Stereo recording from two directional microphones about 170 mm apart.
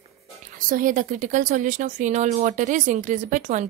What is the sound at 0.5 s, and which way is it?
Speech, 55° right (ahead or behind).